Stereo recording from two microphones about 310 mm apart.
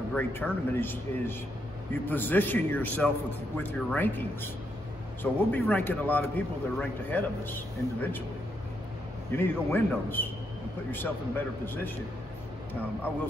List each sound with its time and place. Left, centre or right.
0.1 s speech: centre
9.3 s speech: centre